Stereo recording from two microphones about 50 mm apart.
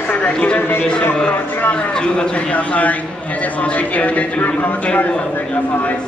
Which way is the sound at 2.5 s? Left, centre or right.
Left.